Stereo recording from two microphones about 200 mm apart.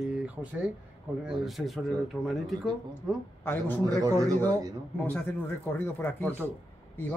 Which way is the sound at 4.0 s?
20° right (ahead or behind).